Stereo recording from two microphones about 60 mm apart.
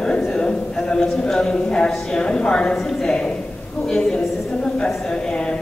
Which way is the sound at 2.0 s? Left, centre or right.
Centre.